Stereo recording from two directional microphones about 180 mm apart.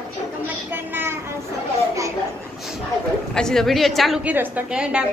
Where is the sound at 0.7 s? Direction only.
10° right (ahead or behind).